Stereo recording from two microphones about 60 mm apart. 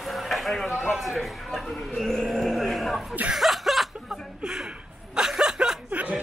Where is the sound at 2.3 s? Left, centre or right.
Centre.